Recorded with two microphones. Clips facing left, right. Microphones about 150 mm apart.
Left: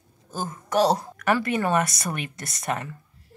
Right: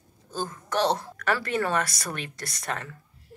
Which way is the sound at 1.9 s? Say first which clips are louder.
Left 4 dB; centre (ahead or behind).